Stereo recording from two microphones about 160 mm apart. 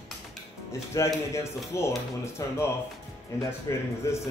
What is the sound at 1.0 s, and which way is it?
Speech, 20° left (ahead or behind).